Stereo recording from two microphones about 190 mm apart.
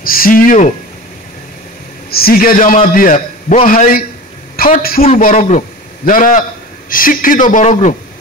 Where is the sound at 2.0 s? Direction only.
55° left (ahead or behind).